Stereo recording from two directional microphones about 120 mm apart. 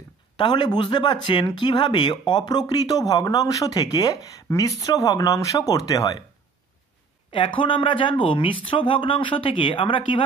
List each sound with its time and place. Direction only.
0.4 s speech: 40° left (ahead or behind)
7.2 s speech: 50° left (ahead or behind)